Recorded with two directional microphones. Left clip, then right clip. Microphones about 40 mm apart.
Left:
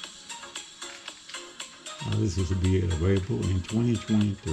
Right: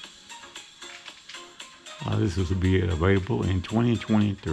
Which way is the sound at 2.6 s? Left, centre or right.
Left.